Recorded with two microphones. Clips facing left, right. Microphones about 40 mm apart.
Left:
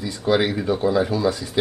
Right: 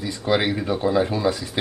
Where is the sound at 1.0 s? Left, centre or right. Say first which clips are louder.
Left 1 dB; right.